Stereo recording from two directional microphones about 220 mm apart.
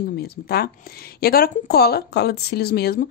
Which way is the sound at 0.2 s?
45° left (ahead or behind).